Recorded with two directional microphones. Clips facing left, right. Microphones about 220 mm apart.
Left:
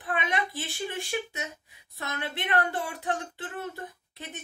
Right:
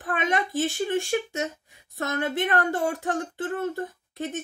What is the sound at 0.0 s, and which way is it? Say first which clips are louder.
A child's voice: right 4 dB; 50° right (ahead or behind).